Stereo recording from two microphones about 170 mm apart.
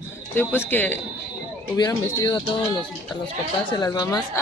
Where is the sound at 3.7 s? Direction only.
25° left (ahead or behind).